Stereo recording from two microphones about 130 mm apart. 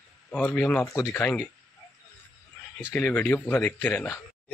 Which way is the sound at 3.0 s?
15° left (ahead or behind).